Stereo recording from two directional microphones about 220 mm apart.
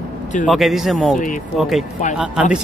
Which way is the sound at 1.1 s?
35° left (ahead or behind).